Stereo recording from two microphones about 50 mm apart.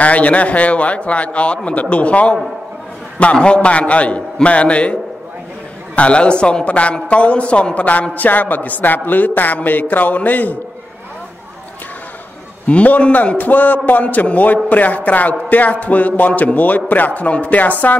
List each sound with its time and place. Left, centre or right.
0.0 s a man's voice: left
5.9 s a man's voice: left
12.6 s a man's voice: left